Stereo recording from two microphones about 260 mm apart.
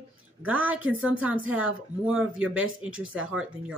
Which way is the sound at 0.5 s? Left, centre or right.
Centre.